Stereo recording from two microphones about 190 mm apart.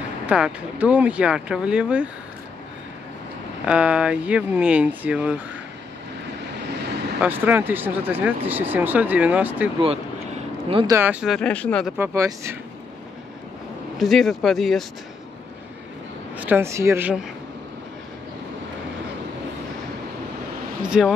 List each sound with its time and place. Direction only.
0.3 s speech: 5° right (ahead or behind)
3.6 s speech: 5° right (ahead or behind)
6.7 s vehicle: 65° right (ahead or behind)
7.2 s speech: 10° right (ahead or behind)
9.8 s vehicle: 30° right (ahead or behind)
10.9 s speech: 10° right (ahead or behind); by 11.9 s 5° left (ahead or behind)
12.0 s speech: 15° right (ahead or behind)
13.9 s speech: centre (ahead or behind)
16.3 s speech: 10° right (ahead or behind)
20.8 s speech: 5° right (ahead or behind)